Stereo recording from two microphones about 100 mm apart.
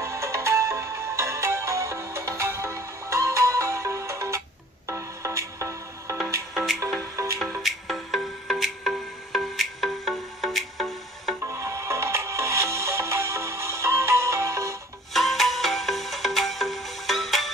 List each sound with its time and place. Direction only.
0.0 s music: 30° right (ahead or behind)
6.5 s music: centre (ahead or behind)
11.4 s music: 30° right (ahead or behind)
15.1 s music: centre (ahead or behind)